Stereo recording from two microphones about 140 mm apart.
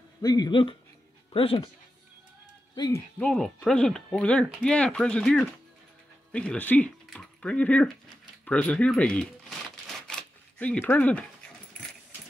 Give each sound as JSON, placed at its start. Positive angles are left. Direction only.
{"t": 0.2, "sound": "speech", "side_deg": 30}
{"t": 2.7, "sound": "speech", "side_deg": 30}
{"t": 3.2, "sound": "speech", "side_deg": 5}
{"t": 8.5, "sound": "a sound", "side_deg": 10}